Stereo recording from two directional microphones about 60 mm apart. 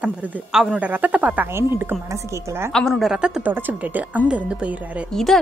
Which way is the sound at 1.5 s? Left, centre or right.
Right.